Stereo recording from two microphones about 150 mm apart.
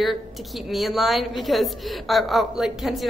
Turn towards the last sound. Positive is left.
turn(degrees=0)  # may be behind; listen again after turning